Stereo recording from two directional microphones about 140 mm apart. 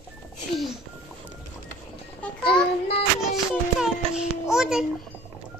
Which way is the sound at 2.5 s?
45° left (ahead or behind).